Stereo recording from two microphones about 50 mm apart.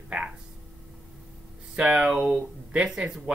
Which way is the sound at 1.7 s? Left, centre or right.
Centre.